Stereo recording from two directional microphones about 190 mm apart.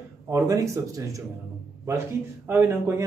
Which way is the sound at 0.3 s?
15° right (ahead or behind).